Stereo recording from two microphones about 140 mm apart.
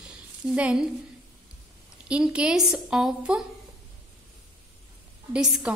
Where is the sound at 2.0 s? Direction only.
10° right (ahead or behind).